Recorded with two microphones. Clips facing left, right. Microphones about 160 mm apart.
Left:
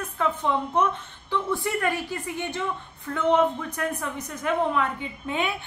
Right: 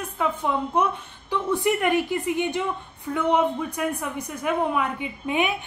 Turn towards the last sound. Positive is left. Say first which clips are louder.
# right 3 dB
turn(degrees=-15)  # may be behind; listen again after turning